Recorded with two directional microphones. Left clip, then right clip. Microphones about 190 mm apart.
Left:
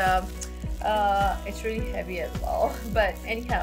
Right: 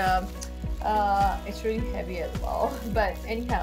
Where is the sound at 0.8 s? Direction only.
15° left (ahead or behind).